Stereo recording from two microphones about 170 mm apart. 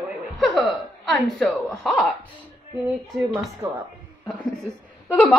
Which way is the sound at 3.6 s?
10° right (ahead or behind).